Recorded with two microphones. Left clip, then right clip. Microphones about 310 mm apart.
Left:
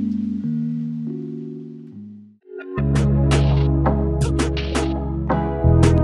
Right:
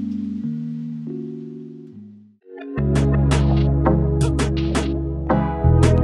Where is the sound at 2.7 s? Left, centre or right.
Centre.